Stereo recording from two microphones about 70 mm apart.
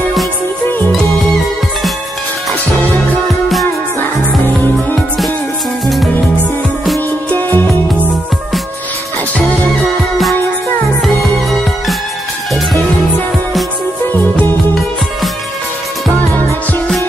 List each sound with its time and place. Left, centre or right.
7.2 s music: left